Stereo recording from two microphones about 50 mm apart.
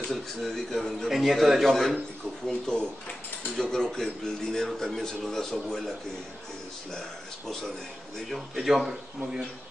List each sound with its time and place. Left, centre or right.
0.1 s a man's voice: centre
6.9 s speech: centre
8.3 s a man's voice: centre